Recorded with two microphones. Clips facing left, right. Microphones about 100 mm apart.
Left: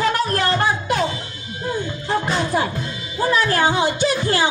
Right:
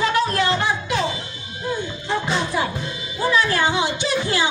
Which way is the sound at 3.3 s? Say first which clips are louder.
Left 2 dB; 45° left (ahead or behind).